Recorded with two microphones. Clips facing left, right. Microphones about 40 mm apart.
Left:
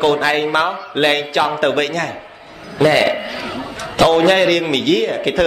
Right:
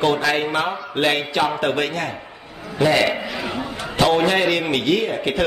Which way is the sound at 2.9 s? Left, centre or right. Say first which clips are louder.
Left 2 dB; left.